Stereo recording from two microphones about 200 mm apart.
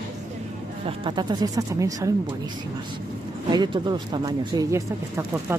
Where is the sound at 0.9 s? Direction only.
25° right (ahead or behind).